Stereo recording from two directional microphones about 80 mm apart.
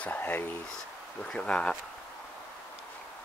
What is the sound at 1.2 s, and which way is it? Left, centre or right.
Speech, centre.